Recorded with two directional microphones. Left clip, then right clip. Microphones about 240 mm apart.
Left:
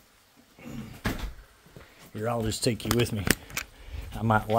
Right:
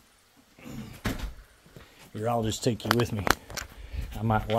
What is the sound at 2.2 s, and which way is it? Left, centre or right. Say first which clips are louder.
Speech: right 2 dB; right.